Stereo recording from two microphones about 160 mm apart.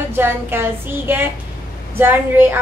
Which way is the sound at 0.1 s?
15° right (ahead or behind).